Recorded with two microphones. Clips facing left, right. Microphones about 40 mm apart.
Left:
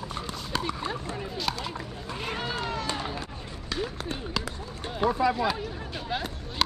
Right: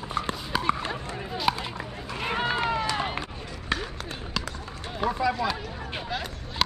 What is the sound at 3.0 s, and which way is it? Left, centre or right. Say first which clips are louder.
Run: right 4 dB; right.